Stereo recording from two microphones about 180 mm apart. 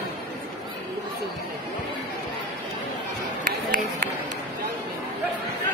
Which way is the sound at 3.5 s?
55° right (ahead or behind).